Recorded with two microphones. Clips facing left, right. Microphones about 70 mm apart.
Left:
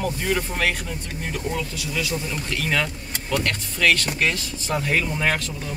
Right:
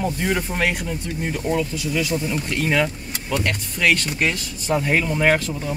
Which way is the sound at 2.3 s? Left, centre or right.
Centre.